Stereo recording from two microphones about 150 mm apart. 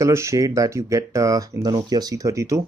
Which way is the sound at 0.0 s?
20° right (ahead or behind).